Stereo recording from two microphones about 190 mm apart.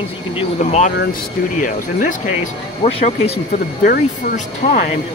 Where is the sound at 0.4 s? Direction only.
35° left (ahead or behind).